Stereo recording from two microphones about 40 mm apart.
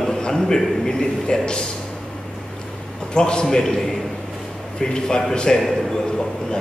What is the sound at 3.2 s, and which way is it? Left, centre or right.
A man's voice, left.